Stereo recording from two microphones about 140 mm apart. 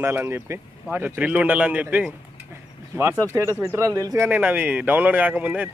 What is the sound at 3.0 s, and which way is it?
Speech, 20° right (ahead or behind).